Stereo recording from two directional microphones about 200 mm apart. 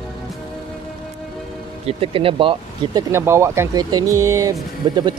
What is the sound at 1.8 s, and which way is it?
Speech, 25° right (ahead or behind).